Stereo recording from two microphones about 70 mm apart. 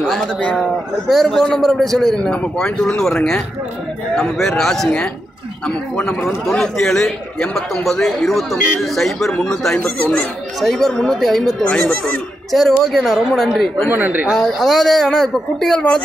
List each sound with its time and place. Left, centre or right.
0.6 s a man's voice: centre
6.2 s speech: centre
12.5 s speech: centre
13.8 s speech: right
14.4 s speech: centre